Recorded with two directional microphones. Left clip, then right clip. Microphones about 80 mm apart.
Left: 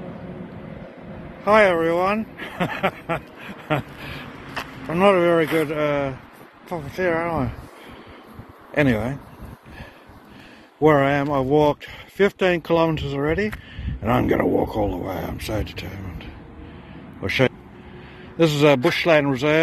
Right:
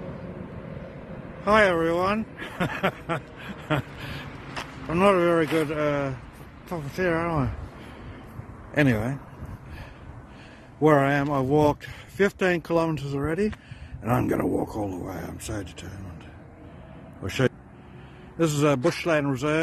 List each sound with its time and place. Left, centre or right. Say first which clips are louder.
1.4 s speech: left 4 dB; right
2.4 s a sound: left 3 dB; right
4.3 s speech: left 4 dB; right
6.7 s speech: left 3 dB; right
8.7 s speech: left 3 dB; right
10.8 s speech: left 3 dB; right
18.4 s a man's voice: left 6 dB; centre